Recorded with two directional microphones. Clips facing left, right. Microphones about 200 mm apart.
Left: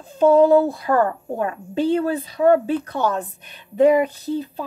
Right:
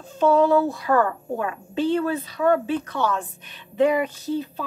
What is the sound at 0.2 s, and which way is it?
A woman's voice, 40° left (ahead or behind).